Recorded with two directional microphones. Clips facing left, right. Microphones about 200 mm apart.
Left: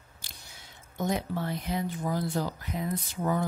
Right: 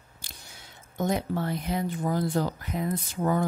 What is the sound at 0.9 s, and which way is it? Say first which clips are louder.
Speech: right 3 dB; 50° right (ahead or behind).